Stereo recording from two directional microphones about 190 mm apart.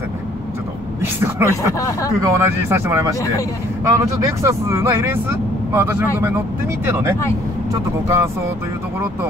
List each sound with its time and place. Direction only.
1.0 s speech: 15° right (ahead or behind)
1.8 s speech: 15° left (ahead or behind)
2.2 s speech: 15° right (ahead or behind)